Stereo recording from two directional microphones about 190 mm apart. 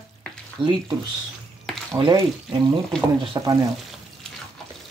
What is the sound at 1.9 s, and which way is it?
Speech, 20° right (ahead or behind).